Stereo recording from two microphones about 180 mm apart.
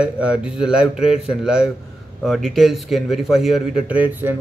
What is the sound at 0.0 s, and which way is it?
A man's voice, 5° right (ahead or behind).